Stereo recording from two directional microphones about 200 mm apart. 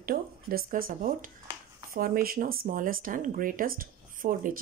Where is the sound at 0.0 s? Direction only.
50° right (ahead or behind).